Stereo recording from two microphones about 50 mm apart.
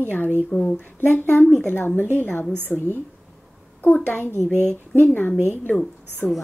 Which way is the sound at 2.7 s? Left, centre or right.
Left.